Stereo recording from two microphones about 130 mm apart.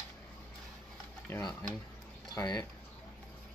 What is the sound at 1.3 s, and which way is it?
Speech, 20° left (ahead or behind).